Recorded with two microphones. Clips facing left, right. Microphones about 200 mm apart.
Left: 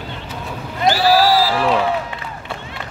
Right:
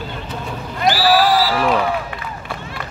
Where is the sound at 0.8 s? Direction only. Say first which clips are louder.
Left 1 dB; 25° left (ahead or behind).